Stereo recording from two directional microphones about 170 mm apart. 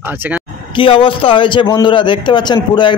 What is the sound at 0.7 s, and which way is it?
A man's voice, 30° left (ahead or behind).